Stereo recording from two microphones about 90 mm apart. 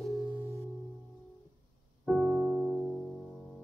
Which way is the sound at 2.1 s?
5° left (ahead or behind).